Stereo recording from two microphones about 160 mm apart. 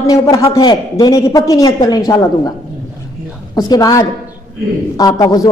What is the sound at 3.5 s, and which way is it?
A man's voice, 25° left (ahead or behind).